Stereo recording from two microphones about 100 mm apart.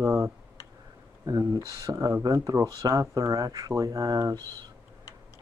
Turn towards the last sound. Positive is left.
turn(degrees=-40)  # may be behind; listen again after turning